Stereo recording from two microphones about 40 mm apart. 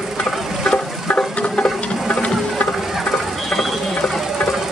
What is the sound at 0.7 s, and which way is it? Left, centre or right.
Music, left.